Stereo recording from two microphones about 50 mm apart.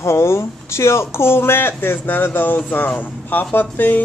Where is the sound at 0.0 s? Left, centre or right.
Left.